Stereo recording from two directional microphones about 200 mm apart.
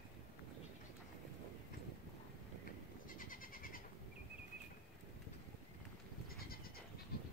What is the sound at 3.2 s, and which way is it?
Goat, 45° left (ahead or behind).